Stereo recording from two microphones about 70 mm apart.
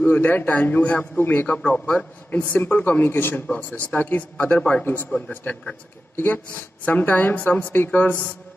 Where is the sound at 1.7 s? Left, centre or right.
Centre; by 3.4 s left.